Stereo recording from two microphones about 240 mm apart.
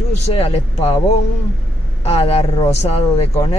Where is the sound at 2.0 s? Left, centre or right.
Left.